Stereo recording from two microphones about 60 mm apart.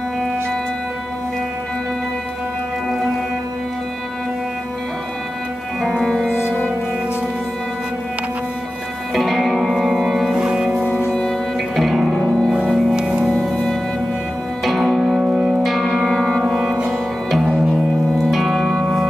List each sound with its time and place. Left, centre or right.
5.8 s music: centre
9.1 s music: centre
11.1 s music: centre
14.6 s music: centre
15.1 s music: centre
15.6 s music: centre
18.3 s music: centre